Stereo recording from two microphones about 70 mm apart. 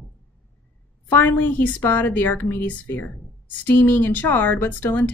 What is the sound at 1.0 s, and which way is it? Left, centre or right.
A woman's voice, left.